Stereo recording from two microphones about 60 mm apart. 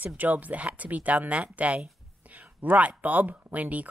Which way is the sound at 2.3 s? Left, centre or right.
Right.